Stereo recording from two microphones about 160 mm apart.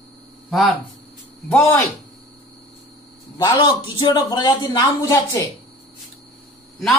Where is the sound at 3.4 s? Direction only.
25° left (ahead or behind).